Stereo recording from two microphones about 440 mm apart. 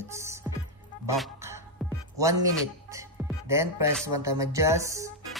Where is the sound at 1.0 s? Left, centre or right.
Centre.